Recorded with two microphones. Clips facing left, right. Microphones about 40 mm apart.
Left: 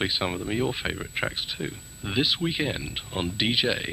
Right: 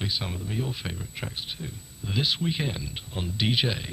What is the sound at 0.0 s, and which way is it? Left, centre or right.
Speech, left.